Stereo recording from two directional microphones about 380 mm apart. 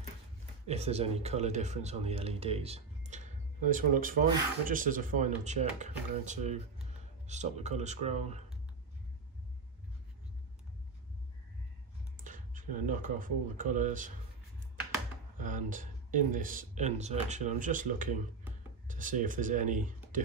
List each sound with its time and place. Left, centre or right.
0.7 s speech: centre
12.2 s speech: centre
15.3 s speech: centre